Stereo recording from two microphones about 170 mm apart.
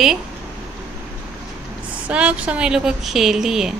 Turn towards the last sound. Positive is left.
turn(degrees=-5)  # may be behind; listen again after turning